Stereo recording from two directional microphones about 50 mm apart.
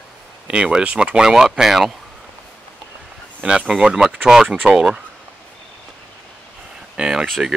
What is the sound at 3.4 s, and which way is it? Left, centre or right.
Speech, right.